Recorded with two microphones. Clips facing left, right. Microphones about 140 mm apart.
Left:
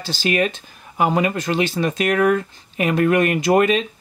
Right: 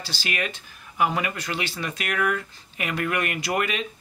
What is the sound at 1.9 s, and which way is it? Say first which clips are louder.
Speech: left 8 dB; 35° left (ahead or behind).